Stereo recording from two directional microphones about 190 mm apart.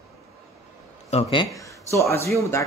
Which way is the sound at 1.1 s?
25° left (ahead or behind).